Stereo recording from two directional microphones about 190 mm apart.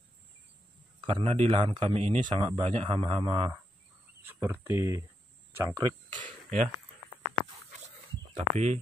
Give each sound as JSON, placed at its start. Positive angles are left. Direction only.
{"t": 1.0, "sound": "speech", "side_deg": -30}
{"t": 4.3, "sound": "speech", "side_deg": -10}
{"t": 6.1, "sound": "a sound", "side_deg": -40}
{"t": 8.4, "sound": "speech", "side_deg": -35}